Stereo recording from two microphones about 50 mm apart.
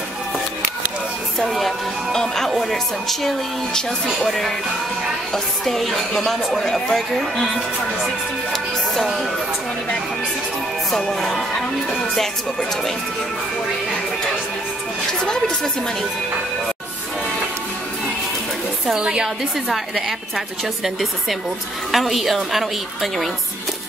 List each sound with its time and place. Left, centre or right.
1.4 s music: centre
2.5 s a woman's voice: centre
8.9 s a woman's voice: centre
10.9 s a woman's voice: centre
15.2 s speech: centre
18.9 s a woman's voice: centre
19.2 s a woman's voice: centre